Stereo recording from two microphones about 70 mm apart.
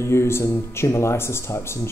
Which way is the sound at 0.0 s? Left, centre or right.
Left.